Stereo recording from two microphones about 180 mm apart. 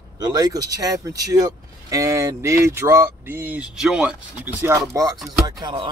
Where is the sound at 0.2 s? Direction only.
20° right (ahead or behind).